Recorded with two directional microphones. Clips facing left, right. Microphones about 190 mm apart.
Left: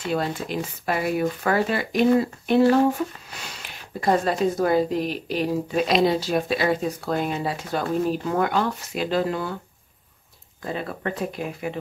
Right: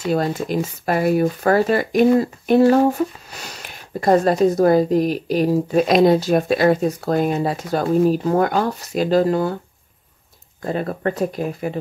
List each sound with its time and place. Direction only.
0.0 s speech: 40° right (ahead or behind)
10.6 s speech: 45° right (ahead or behind)